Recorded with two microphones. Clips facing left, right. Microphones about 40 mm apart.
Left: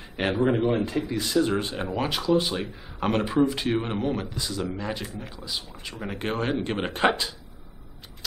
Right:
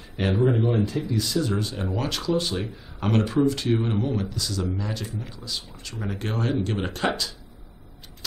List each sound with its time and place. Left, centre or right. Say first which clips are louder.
0.4 s speech: even; left
1.9 s speech: left 3 dB; centre